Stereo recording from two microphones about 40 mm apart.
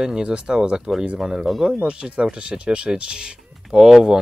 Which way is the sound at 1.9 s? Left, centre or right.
Right.